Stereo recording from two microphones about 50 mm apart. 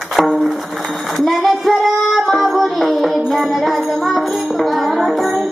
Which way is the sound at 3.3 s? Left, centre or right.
Centre.